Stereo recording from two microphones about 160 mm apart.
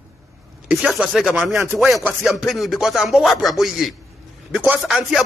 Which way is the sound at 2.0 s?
Centre (ahead or behind).